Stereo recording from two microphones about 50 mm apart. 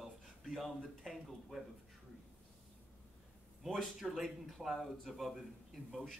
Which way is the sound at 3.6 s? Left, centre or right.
Centre.